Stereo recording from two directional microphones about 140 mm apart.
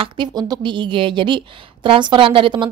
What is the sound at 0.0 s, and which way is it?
A woman's voice, 30° right (ahead or behind).